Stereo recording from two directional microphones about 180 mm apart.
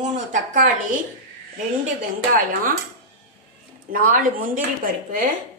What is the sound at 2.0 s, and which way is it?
Speech, 50° right (ahead or behind).